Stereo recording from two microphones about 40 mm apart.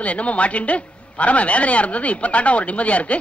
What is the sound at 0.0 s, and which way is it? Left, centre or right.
A man's voice, left.